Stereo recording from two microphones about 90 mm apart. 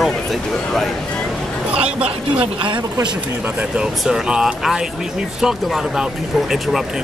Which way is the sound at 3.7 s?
5° right (ahead or behind).